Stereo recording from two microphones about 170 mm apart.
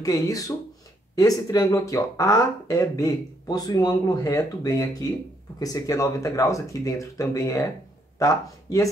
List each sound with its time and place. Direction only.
0.0 s speech: 20° left (ahead or behind)